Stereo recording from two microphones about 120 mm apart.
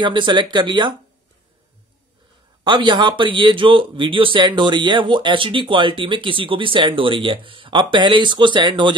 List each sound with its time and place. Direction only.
0.0 s speech: 40° right (ahead or behind)
2.6 s speech: 40° right (ahead or behind)